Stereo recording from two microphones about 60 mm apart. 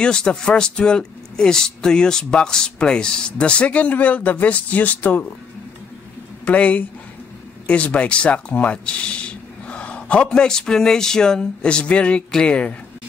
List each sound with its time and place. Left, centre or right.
0.0 s speech: centre
6.4 s speech: left